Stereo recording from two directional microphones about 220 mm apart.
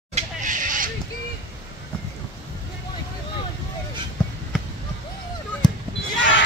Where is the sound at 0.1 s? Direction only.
35° right (ahead or behind).